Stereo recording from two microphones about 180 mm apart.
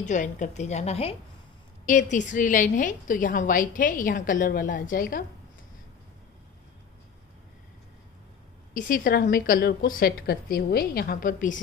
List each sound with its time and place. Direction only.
0.0 s a woman's voice: 45° left (ahead or behind)
8.7 s a woman's voice: 50° left (ahead or behind)